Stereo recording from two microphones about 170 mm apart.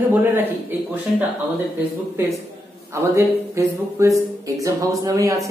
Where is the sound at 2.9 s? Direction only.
15° right (ahead or behind).